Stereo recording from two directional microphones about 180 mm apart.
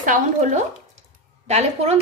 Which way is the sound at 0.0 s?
45° right (ahead or behind).